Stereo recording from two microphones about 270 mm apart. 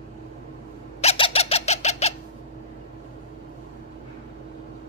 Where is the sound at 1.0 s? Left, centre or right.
Left.